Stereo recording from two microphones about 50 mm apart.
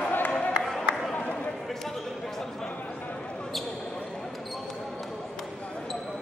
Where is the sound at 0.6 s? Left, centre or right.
Centre.